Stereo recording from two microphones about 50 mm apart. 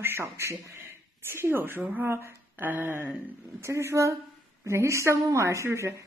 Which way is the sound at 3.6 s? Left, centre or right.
Right.